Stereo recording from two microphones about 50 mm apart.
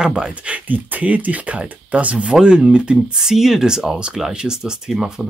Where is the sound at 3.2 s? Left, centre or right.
Centre.